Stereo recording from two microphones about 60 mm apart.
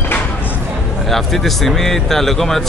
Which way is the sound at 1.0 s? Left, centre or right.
Centre.